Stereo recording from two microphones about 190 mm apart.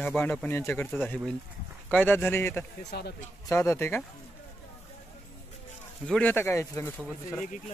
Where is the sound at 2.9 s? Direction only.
55° left (ahead or behind).